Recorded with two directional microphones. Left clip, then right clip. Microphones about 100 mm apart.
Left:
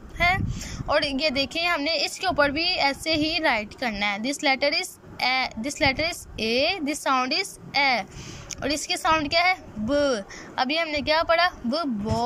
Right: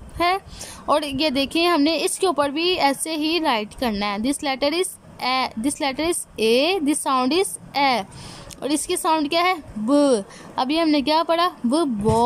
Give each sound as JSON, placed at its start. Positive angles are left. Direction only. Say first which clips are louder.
{"t": 0.2, "sound": "a woman's voice", "louder": "right 2 dB", "side_deg": -25}